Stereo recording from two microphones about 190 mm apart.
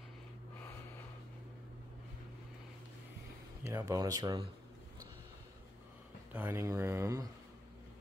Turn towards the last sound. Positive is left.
turn(degrees=-15)  # may be behind; listen again after turning